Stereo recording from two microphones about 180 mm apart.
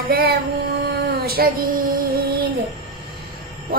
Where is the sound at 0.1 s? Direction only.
60° right (ahead or behind).